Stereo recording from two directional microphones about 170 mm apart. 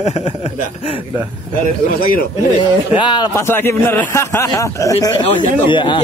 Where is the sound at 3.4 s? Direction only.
15° left (ahead or behind); by 6.0 s 30° left (ahead or behind).